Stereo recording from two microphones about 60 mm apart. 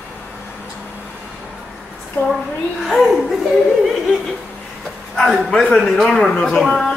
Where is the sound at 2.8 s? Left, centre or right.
Centre.